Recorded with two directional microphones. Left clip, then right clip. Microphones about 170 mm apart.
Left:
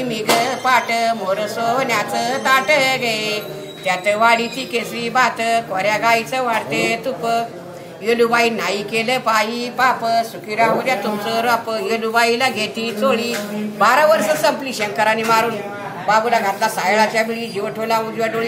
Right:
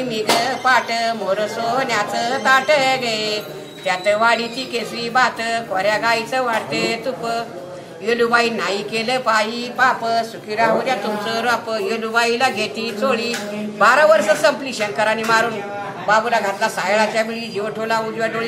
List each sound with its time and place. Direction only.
0.1 s a woman's voice: 15° left (ahead or behind)